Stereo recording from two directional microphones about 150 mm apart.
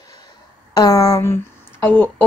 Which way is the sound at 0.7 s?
20° left (ahead or behind).